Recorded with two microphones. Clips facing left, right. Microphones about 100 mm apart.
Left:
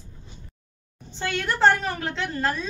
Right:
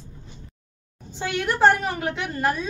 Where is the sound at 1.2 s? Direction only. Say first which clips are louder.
Right 2 dB; 10° right (ahead or behind).